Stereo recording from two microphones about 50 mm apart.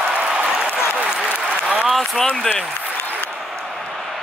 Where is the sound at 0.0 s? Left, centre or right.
Right.